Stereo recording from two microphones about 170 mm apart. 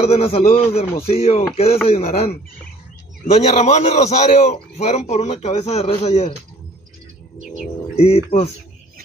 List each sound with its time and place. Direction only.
0.0 s a man's voice: 35° left (ahead or behind)
3.5 s a man's voice: 40° left (ahead or behind)
7.9 s speech: 35° left (ahead or behind)